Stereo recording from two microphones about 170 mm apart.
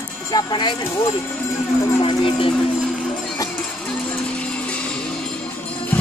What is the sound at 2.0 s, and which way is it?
Speech, 30° left (ahead or behind).